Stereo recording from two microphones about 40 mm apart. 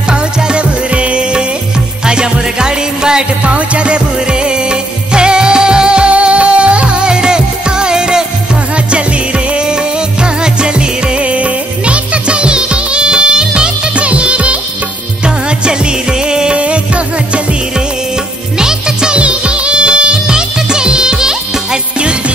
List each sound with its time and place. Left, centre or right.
0.1 s music: right
9.5 s music: right
16.5 s music: right
18.6 s music of bollywood: centre